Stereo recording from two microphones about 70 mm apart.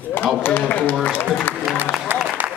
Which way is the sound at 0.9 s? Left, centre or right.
Left.